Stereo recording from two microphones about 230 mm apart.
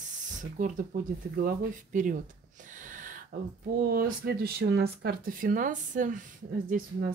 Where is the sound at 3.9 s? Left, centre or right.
Right.